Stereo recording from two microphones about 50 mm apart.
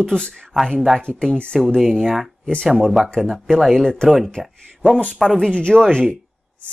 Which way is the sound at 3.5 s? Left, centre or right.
Centre.